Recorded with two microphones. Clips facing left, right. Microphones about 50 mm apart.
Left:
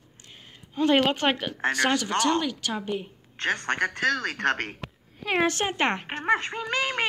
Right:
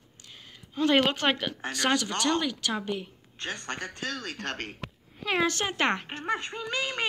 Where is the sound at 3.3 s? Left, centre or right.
Left.